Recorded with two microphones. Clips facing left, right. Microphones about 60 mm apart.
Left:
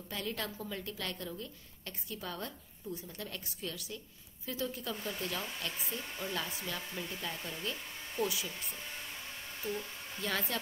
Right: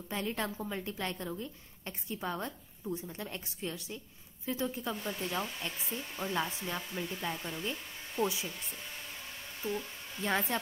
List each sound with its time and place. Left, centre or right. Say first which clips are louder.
0.1 s a woman's voice: right 4 dB; right
7.0 s speech: right 3 dB; centre
8.2 s a woman's voice: right 2 dB; right
9.6 s a sound: right 2 dB; centre
10.2 s a woman's voice: right 4 dB; right